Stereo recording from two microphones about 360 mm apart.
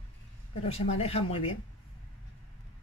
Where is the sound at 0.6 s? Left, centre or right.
Centre.